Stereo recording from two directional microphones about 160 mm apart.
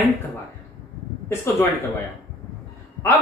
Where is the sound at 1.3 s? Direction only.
15° left (ahead or behind).